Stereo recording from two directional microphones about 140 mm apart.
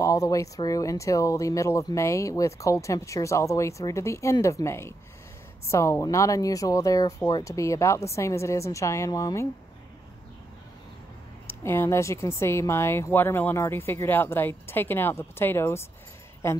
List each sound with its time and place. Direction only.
0.0 s speech: 25° left (ahead or behind)
11.4 s speech: 15° left (ahead or behind)